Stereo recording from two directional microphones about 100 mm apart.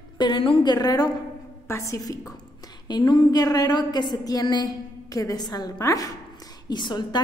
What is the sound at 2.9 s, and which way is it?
A woman's voice, 45° left (ahead or behind).